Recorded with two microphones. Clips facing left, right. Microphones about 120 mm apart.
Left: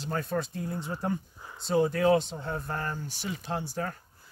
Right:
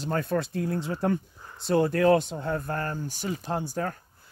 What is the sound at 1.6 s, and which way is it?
Speech, 65° right (ahead or behind).